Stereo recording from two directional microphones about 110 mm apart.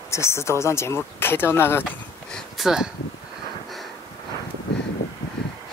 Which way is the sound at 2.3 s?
5° right (ahead or behind).